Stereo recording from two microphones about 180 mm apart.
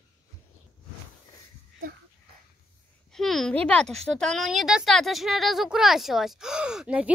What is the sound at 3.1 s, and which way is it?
A woman's voice, centre (ahead or behind).